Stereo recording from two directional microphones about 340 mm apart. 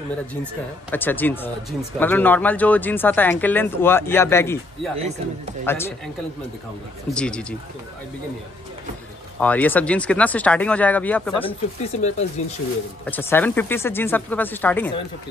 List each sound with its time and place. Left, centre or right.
0.9 s speech: centre
7.2 s speech: centre
9.4 s speech: centre
11.4 s speech: centre
13.0 s speech: centre